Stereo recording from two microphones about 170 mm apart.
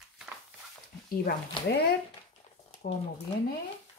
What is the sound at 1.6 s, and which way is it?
Speech, 30° left (ahead or behind).